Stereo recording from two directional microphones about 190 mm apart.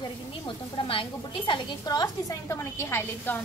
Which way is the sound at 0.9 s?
25° left (ahead or behind).